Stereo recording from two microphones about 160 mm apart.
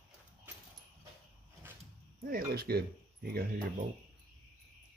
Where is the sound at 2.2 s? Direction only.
70° right (ahead or behind).